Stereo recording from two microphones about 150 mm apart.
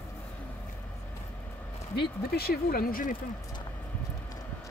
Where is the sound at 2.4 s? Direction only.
85° left.